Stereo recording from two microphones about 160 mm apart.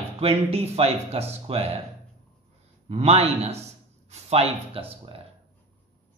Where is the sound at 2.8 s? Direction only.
40° right (ahead or behind).